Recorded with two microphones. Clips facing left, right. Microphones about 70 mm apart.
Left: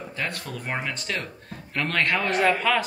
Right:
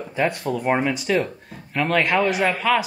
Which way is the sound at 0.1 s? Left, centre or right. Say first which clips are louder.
Right 11 dB; centre.